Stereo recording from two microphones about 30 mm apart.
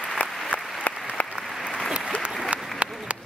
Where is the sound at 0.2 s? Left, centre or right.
Left.